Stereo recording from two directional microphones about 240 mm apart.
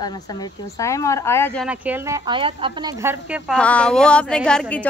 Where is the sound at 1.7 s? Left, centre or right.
Centre.